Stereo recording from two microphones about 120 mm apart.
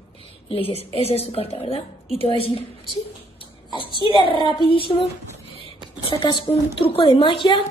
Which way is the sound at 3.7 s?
45° left (ahead or behind).